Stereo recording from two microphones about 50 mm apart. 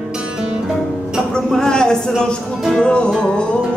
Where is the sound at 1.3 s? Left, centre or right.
Centre.